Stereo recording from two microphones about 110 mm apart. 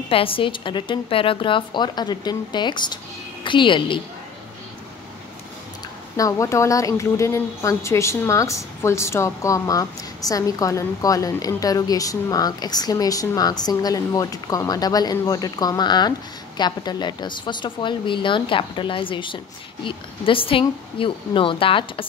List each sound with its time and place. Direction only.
0.1 s a woman's voice: 55° left (ahead or behind)
6.1 s speech: 30° left (ahead or behind); by 22.0 s 55° left (ahead or behind)